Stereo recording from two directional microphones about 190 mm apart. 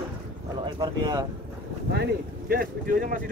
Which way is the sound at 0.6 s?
20° right (ahead or behind).